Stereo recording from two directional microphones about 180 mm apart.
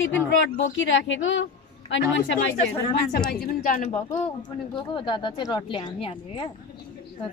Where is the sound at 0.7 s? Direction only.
90° left.